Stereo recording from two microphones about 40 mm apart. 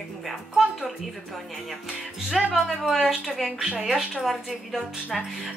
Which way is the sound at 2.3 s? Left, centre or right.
Centre.